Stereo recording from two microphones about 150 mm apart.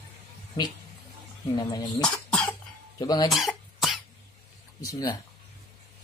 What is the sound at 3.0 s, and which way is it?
Speech, 25° left (ahead or behind).